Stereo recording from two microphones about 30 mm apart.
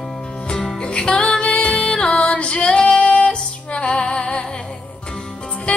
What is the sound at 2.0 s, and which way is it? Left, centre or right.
Female singing, left.